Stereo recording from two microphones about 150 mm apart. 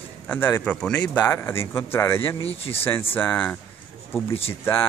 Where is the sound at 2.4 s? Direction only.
40° left (ahead or behind).